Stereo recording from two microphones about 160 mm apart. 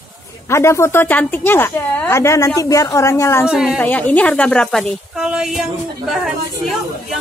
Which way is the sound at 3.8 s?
10° left (ahead or behind).